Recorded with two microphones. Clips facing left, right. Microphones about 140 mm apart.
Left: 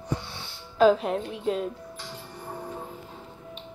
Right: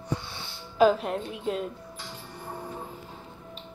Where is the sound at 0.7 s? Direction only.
Centre (ahead or behind).